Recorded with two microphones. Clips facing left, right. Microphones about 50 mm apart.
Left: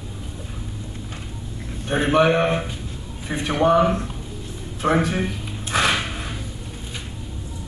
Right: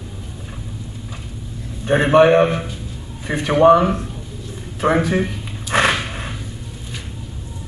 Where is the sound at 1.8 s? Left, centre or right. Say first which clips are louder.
Right 5 dB; right.